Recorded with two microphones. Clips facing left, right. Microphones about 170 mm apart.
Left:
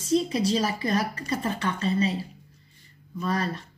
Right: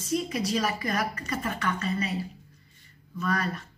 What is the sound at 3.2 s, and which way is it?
Speech, 30° left (ahead or behind).